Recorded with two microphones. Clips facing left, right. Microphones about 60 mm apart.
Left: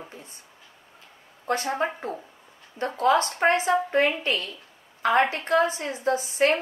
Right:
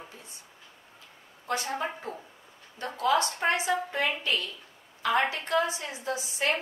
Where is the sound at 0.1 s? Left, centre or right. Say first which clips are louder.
Left 4 dB; left.